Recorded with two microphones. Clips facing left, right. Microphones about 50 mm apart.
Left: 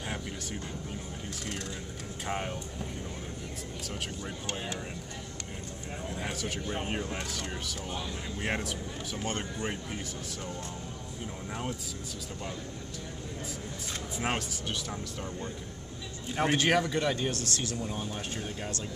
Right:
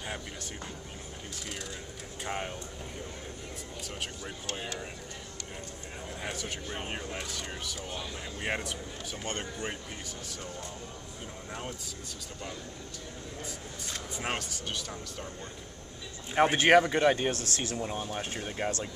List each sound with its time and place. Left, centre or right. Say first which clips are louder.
2.2 s speech: left 1 dB; centre
6.2 s speech: left 1 dB; centre
14.1 s speech: left 3 dB; centre
16.3 s speech: right 5 dB; right